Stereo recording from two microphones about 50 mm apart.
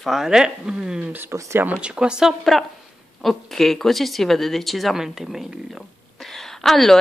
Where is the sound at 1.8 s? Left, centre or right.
Centre.